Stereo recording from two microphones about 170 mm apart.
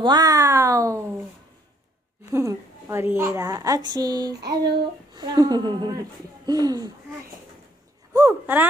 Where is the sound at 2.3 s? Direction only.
15° right (ahead or behind).